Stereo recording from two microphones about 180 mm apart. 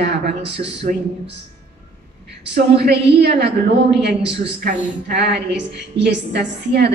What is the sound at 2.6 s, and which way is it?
Speech, 65° right (ahead or behind).